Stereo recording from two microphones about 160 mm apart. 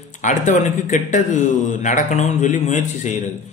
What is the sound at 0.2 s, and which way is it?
A man's voice, 50° left (ahead or behind).